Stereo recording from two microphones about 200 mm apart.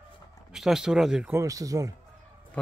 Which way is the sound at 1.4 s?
15° right (ahead or behind).